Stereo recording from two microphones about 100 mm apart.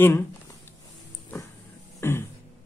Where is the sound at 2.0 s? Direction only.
25° left (ahead or behind).